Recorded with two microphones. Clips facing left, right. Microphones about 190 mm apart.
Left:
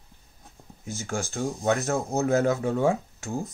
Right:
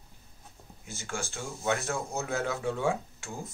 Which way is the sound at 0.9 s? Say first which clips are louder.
Left 6 dB; 40° left (ahead or behind).